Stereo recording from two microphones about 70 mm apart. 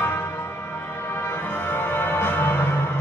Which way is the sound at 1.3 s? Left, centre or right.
Left.